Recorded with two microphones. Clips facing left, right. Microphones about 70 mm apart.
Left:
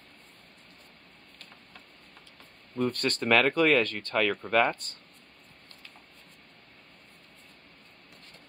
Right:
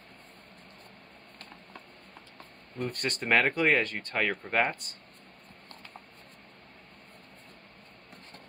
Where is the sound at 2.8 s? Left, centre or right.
Centre.